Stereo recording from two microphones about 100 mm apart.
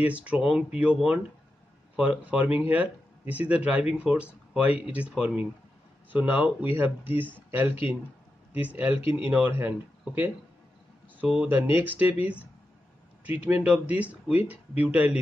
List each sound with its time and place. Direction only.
0.0 s speech: 15° right (ahead or behind)
0.4 s speech: 5° right (ahead or behind)
0.7 s speech: 15° right (ahead or behind)